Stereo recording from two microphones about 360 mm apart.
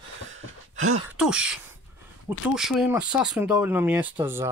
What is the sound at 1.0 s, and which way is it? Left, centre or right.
Speech, centre.